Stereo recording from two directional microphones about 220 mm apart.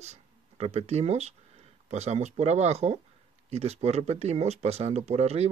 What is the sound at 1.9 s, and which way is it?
Speech, 30° right (ahead or behind).